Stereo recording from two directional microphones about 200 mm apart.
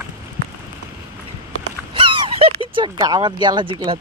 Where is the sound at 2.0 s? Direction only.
25° right (ahead or behind).